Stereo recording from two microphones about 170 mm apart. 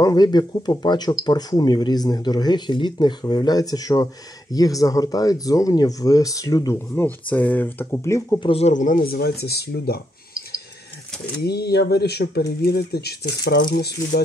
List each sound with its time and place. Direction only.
0.0 s speech: 25° left (ahead or behind)
8.4 s speech: 35° left (ahead or behind); by 9.9 s 70° left (ahead or behind)
11.4 s speech: 70° left (ahead or behind)